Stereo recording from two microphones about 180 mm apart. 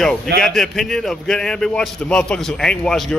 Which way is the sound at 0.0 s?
5° left (ahead or behind).